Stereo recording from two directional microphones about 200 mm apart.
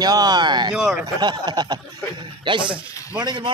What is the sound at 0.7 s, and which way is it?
Speech, 5° right (ahead or behind).